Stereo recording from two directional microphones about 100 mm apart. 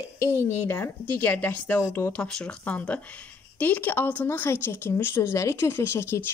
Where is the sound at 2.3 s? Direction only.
10° left (ahead or behind).